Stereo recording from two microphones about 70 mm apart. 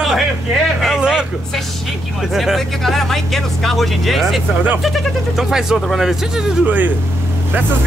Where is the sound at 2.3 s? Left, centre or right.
Centre.